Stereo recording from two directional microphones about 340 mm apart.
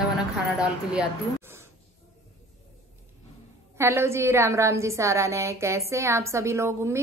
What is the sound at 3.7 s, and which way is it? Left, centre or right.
A woman's voice, centre.